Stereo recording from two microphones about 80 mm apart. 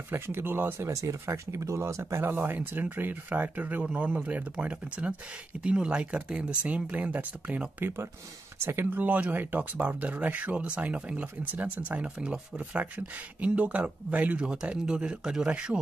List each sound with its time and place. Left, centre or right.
0.1 s speech: right
0.8 s speech: right; by 15.8 s centre